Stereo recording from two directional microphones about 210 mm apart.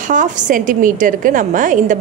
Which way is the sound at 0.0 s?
40° right (ahead or behind).